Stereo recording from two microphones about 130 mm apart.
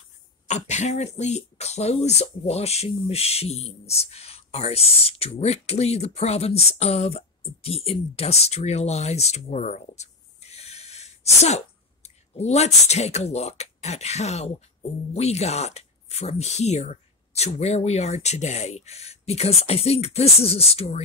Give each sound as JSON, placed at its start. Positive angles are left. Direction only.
{"t": 0.5, "sound": "speech", "side_deg": 65}